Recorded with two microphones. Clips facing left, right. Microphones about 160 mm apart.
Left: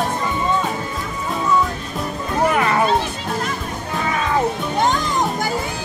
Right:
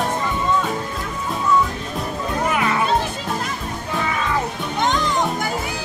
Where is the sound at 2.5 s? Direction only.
45° left (ahead or behind).